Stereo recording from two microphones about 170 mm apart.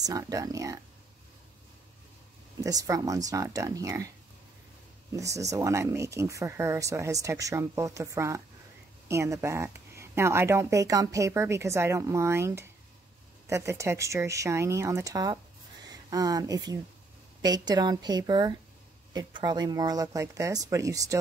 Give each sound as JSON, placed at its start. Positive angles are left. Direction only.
{"t": 0.0, "sound": "speech", "side_deg": -20}
{"t": 2.6, "sound": "speech", "side_deg": -20}
{"t": 5.1, "sound": "speech", "side_deg": -20}